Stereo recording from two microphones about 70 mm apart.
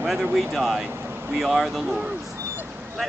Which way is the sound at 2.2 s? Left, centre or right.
Right.